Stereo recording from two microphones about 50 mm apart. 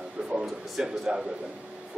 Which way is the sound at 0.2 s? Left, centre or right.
Centre.